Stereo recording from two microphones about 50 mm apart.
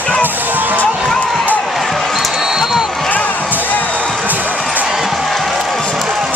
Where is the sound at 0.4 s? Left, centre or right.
Right.